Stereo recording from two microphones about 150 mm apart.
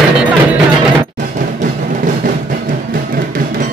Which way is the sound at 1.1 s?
55° right (ahead or behind).